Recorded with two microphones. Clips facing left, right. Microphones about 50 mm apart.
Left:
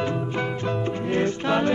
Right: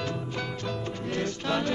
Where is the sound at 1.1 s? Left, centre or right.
Left.